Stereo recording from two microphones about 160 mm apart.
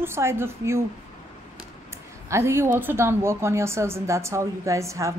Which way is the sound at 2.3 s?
15° right (ahead or behind).